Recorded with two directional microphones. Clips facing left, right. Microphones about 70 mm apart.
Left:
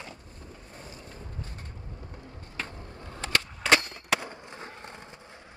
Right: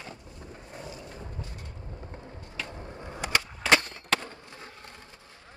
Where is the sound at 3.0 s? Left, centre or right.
Centre.